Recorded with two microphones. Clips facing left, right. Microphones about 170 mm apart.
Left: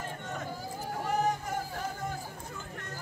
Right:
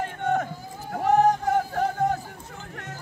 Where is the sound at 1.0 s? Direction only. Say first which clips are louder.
Right 11 dB; 80° right.